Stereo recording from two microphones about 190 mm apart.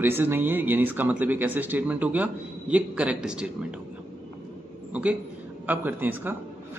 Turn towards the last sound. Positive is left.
turn(degrees=-10)  # may be behind; listen again after turning